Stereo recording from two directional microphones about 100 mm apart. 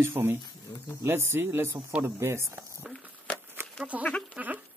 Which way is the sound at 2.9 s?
15° left (ahead or behind).